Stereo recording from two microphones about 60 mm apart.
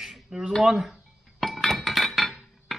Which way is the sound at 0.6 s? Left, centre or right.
Centre.